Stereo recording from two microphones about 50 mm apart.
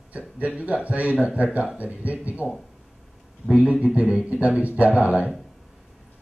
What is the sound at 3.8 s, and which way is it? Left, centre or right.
Speech, right.